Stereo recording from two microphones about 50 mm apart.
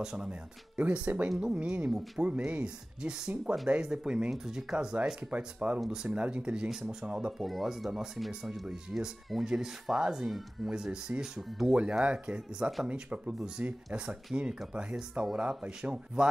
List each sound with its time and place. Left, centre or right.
0.0 s speech: centre
5.4 s speech: right
7.4 s speech: centre
8.3 s speech: centre
11.4 s speech: centre
12.0 s speech: right